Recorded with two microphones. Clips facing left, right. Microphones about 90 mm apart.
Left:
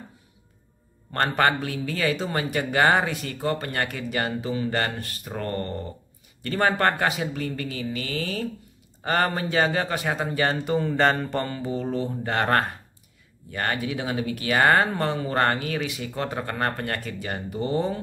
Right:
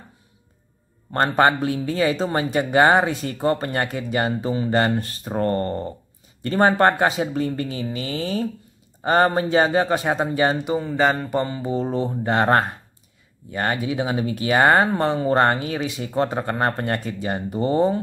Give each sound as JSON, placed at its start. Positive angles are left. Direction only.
{"t": 1.1, "sound": "a man's voice", "side_deg": -25}
{"t": 10.8, "sound": "mantra", "side_deg": -5}
{"t": 11.6, "sound": "a man's voice", "side_deg": -30}